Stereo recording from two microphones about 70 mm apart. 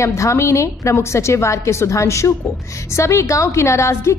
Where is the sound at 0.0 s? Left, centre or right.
Left.